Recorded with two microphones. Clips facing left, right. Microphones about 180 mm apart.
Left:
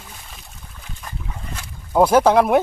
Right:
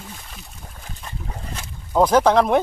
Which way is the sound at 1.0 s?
35° right (ahead or behind).